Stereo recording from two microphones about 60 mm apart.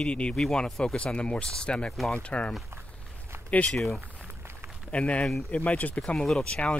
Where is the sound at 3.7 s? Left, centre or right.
Centre.